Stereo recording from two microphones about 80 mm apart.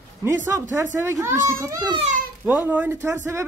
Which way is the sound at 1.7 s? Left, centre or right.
Right.